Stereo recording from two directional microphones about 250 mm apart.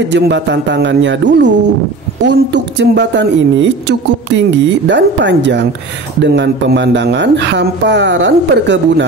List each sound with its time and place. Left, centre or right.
0.1 s a woman's voice: right